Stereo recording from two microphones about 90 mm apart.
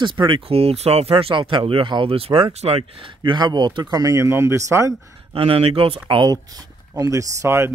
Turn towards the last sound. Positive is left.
turn(degrees=-30)  # may be behind; listen again after turning